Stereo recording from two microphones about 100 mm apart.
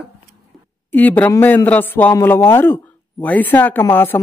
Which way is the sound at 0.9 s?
15° left (ahead or behind).